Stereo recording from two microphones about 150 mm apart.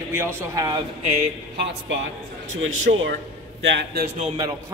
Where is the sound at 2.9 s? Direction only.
90° right.